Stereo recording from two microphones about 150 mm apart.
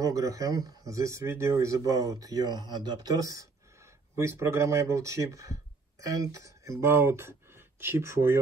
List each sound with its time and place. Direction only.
0.0 s speech: 20° right (ahead or behind)